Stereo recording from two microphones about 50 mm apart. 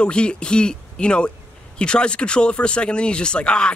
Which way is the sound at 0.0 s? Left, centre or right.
Centre.